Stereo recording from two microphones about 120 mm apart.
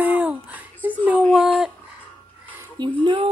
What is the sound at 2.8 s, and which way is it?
Speech, 40° right (ahead or behind).